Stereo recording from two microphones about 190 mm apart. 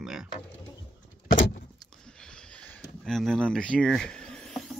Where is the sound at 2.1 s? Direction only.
5° left (ahead or behind).